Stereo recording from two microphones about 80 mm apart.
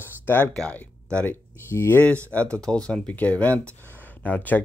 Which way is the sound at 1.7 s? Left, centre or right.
Left.